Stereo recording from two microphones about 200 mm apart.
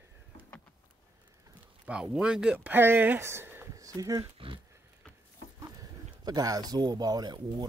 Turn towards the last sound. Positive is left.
turn(degrees=-20)  # may be behind; listen again after turning